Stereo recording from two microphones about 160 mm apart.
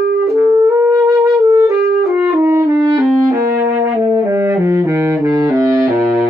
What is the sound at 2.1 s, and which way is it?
Music, 15° right (ahead or behind).